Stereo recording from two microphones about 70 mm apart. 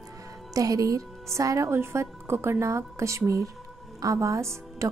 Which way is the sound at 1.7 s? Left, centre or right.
Right.